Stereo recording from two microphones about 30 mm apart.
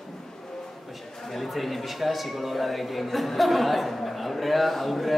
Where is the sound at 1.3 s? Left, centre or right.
Centre.